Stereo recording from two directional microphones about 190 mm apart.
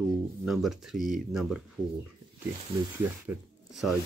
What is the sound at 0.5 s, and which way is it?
Speech, centre (ahead or behind).